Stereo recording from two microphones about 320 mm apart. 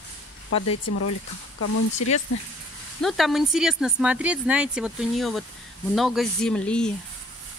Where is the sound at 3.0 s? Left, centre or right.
Centre.